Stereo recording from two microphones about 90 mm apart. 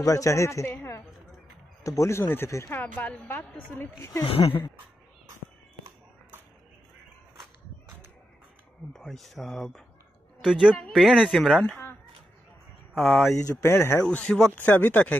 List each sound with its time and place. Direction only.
0.0 s speech: 40° left (ahead or behind)
3.0 s a woman's voice: 20° left (ahead or behind)
4.3 s speech: 85° left
8.9 s speech: centre (ahead or behind)
12.9 s speech: centre (ahead or behind)
13.6 s a woman's voice: 30° left (ahead or behind)
14.0 s speech: 10° left (ahead or behind)